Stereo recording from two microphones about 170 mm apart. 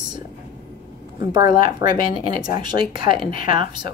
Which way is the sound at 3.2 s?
60° left (ahead or behind).